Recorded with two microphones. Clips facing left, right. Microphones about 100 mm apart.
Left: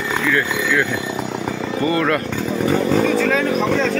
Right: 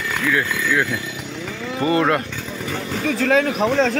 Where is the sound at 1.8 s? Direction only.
20° right (ahead or behind).